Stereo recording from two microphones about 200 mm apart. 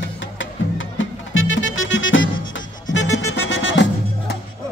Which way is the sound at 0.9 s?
70° left (ahead or behind).